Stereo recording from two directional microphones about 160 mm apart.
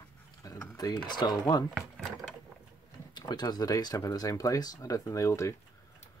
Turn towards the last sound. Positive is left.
turn(degrees=20)  # may be behind; listen again after turning